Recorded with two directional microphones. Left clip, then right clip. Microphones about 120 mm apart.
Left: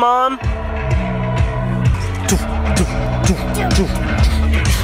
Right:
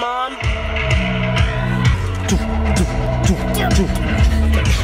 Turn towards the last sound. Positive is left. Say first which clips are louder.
# even
turn(degrees=40)  # may be behind; listen again after turning